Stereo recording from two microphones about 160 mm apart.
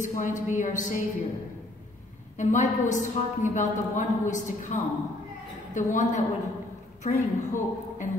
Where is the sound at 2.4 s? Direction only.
50° left (ahead or behind).